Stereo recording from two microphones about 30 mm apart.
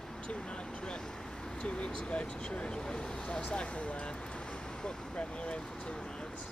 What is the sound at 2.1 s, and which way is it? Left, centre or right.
Speech, left.